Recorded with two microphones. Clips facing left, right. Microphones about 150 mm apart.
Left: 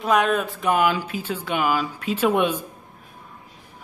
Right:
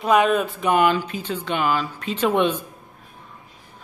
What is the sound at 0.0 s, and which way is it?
Speech, centre (ahead or behind).